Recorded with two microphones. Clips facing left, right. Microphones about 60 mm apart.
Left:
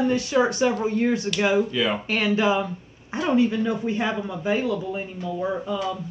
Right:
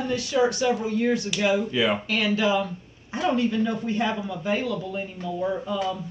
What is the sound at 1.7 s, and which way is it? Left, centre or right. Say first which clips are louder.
Speech: right 1 dB; centre.